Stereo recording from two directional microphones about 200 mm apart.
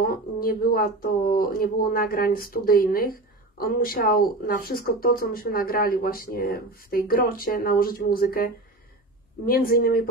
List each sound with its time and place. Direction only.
0.0 s speech: 50° left (ahead or behind)
9.5 s speech: 50° left (ahead or behind)